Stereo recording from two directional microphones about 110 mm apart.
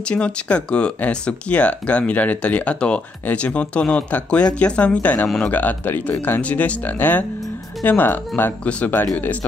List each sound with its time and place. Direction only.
0.1 s speech: 10° left (ahead or behind)